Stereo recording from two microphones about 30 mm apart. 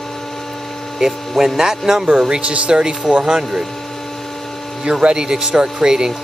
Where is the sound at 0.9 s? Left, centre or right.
Centre.